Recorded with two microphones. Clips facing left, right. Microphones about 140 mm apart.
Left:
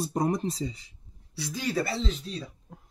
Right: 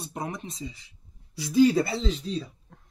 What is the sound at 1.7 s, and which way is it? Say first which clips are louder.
Speech: right 4 dB; 20° right (ahead or behind).